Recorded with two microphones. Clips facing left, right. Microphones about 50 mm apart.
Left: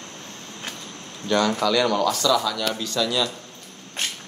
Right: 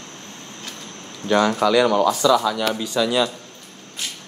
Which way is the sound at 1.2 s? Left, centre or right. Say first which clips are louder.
Right 3 dB; centre.